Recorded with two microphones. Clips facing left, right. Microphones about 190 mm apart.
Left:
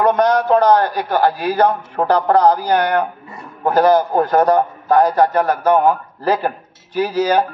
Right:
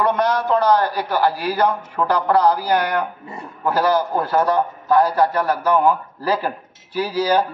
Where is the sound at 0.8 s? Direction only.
10° right (ahead or behind).